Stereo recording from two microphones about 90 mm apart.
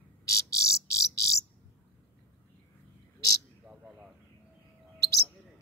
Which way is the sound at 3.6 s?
10° right (ahead or behind).